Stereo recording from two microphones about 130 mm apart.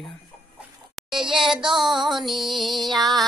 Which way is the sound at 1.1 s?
40° right (ahead or behind).